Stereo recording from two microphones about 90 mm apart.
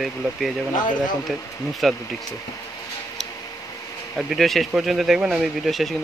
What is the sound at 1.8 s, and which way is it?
Speech, centre (ahead or behind).